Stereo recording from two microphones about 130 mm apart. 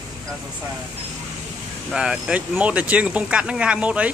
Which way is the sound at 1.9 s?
5° right (ahead or behind).